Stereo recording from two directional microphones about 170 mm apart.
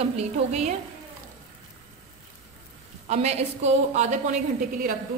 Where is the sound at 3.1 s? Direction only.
40° right (ahead or behind).